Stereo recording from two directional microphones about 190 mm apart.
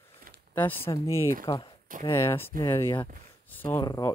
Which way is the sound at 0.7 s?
30° left (ahead or behind).